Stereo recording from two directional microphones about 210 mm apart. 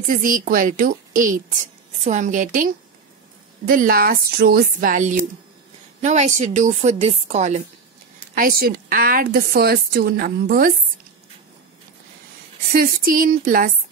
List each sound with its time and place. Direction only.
0.0 s a woman's voice: 40° right (ahead or behind)
8.4 s a woman's voice: 45° right (ahead or behind)
12.7 s a woman's voice: 40° right (ahead or behind)